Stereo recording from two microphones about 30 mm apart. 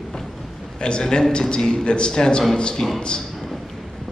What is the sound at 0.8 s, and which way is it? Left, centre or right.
A man's voice, left.